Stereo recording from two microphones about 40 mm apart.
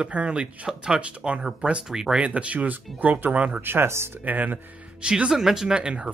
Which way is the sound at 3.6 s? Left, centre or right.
Right.